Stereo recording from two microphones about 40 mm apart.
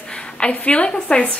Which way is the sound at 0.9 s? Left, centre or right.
Left.